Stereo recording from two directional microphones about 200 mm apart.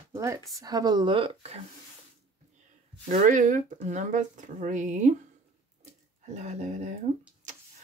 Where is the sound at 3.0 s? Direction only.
40° right (ahead or behind).